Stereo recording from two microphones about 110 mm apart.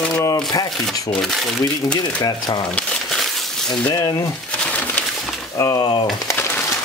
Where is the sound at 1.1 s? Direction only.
5° left (ahead or behind).